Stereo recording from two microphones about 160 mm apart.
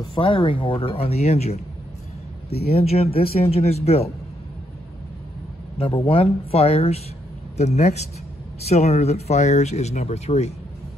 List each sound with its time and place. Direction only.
0.0 s speech: 30° left (ahead or behind)
2.7 s speech: 40° left (ahead or behind)
5.8 s speech: 35° left (ahead or behind)